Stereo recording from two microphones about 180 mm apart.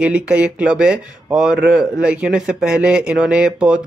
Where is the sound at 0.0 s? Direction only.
5° right (ahead or behind).